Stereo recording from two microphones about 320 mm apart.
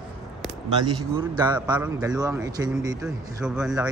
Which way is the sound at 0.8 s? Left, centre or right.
Centre.